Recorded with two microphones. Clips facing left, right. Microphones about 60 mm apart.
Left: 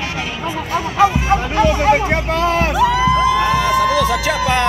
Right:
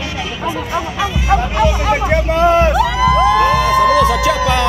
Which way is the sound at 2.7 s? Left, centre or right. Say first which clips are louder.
Even; centre.